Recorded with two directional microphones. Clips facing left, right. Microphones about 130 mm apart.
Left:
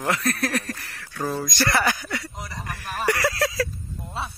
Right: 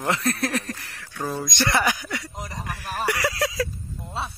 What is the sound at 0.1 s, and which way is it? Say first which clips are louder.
Speech: even; 25° right (ahead or behind).